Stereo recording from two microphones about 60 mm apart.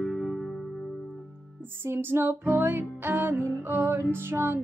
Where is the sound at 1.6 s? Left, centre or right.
Right.